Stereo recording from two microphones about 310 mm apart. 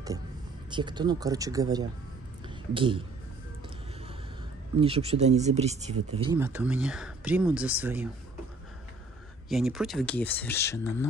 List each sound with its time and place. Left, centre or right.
0.7 s speech: centre
2.4 s a sound: centre
4.7 s speech: centre
6.4 s speech: centre
9.5 s speech: centre